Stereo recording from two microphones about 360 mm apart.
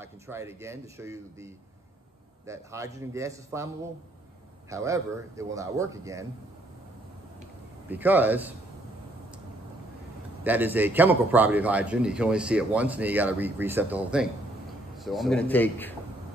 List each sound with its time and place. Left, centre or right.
0.0 s speech: centre
7.9 s a man's voice: centre
10.4 s a man's voice: centre